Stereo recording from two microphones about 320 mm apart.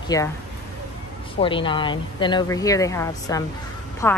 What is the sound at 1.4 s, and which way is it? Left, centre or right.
A woman's voice, centre.